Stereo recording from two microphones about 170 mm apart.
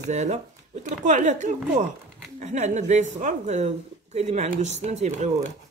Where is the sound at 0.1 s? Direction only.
45° right (ahead or behind).